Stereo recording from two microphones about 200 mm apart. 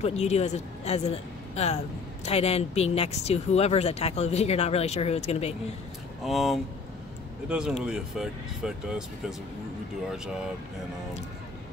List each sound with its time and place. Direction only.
0.0 s a woman's voice: 35° left (ahead or behind)
6.2 s speech: centre (ahead or behind)